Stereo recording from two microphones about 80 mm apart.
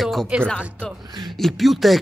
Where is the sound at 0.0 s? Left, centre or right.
Centre.